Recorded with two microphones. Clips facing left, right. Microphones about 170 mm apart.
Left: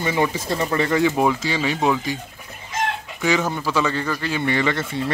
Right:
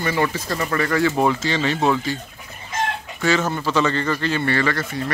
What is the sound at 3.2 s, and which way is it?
A man's voice, 15° left (ahead or behind).